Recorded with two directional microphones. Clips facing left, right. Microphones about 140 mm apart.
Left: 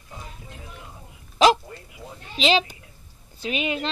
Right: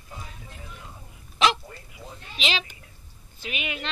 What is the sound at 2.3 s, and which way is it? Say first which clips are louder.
Speech: left 9 dB; 35° left (ahead or behind).